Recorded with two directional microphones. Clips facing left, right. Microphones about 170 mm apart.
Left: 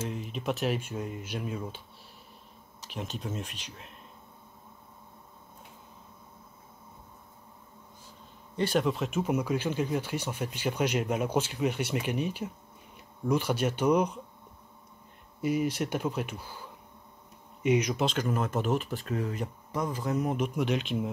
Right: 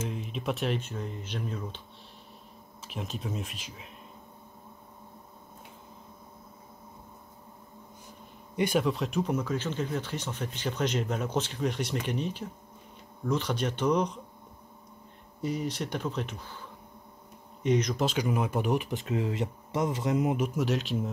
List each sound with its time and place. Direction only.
0.1 s speech: centre (ahead or behind)
2.8 s speech: centre (ahead or behind)
8.7 s speech: centre (ahead or behind)
15.4 s speech: 10° left (ahead or behind)
17.6 s speech: 10° left (ahead or behind)
18.0 s speech: 10° right (ahead or behind)
20.3 s speech: 5° right (ahead or behind)